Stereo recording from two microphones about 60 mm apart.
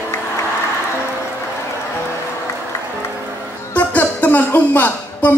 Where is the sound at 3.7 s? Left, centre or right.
Left.